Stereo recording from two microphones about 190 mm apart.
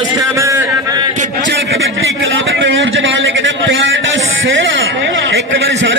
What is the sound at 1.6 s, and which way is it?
A man's voice, 75° right (ahead or behind).